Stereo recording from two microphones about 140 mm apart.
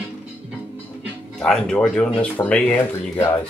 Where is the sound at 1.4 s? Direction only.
5° left (ahead or behind).